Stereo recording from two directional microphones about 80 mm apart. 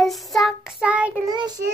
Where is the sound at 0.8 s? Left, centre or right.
Centre.